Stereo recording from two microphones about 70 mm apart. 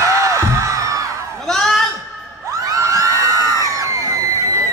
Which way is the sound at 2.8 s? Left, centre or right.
Right.